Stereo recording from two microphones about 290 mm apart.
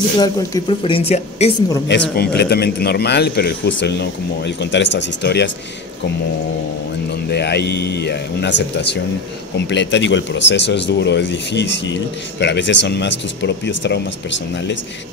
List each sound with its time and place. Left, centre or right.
0.2 s a woman's voice: centre
1.9 s speech: left
7.2 s speech: left